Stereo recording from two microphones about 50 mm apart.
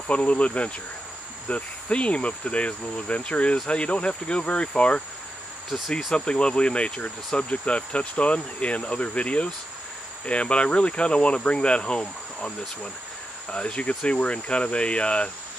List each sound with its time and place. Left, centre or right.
0.1 s speech: left
5.9 s speech: centre
6.1 s speech: centre